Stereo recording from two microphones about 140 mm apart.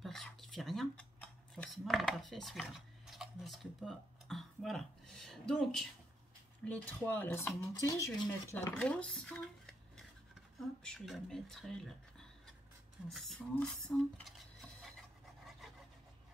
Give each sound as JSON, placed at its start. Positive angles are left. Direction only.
{"t": 0.0, "sound": "a sound", "side_deg": 0}
{"t": 1.5, "sound": "speech", "side_deg": 0}
{"t": 8.7, "sound": "speech", "side_deg": 10}
{"t": 13.1, "sound": "cutlery", "side_deg": 0}